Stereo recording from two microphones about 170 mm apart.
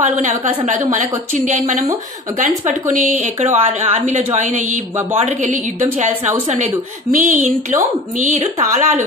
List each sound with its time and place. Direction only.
0.0 s a woman's voice: 45° right (ahead or behind)
7.1 s a woman's voice: 50° right (ahead or behind)